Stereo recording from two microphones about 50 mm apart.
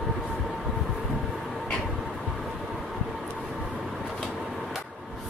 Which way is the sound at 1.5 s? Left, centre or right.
Centre.